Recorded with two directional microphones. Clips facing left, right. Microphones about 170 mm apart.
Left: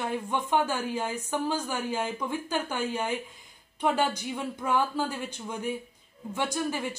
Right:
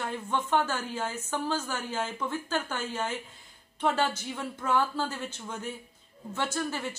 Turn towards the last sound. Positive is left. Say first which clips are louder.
# left 2 dB
turn(degrees=10)  # may be behind; listen again after turning